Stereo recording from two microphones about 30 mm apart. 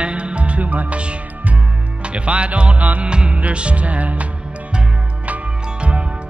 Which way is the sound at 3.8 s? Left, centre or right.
Right.